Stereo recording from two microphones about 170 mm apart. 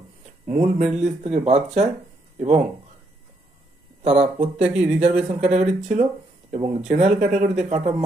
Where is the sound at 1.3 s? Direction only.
40° right (ahead or behind).